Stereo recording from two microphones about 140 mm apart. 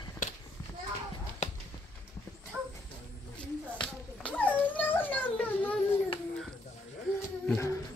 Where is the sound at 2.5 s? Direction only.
10° right (ahead or behind).